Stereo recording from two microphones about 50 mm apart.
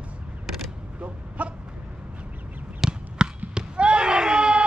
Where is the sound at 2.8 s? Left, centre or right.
Centre.